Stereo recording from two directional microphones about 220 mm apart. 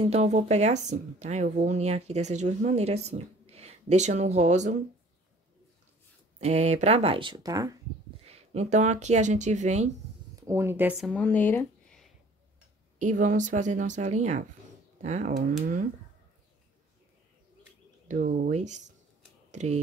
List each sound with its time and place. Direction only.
0.0 s speech: 30° right (ahead or behind)
6.4 s speech: 30° right (ahead or behind)
8.3 s speech: 30° right (ahead or behind)
10.4 s speech: 10° right (ahead or behind)
11.1 s speech: 5° left (ahead or behind)
13.0 s speech: 35° right (ahead or behind)
18.0 s speech: 35° right (ahead or behind)